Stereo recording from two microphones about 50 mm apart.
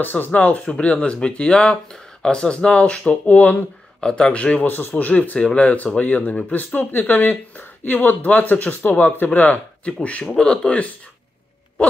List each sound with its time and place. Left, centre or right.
0.0 s speech: left
4.0 s speech: centre
4.6 s speech: left
10.2 s speech: centre